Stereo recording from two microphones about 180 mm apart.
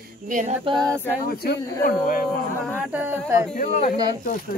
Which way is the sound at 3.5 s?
45° left (ahead or behind).